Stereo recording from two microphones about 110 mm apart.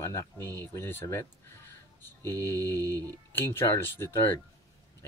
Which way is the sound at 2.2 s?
35° right (ahead or behind).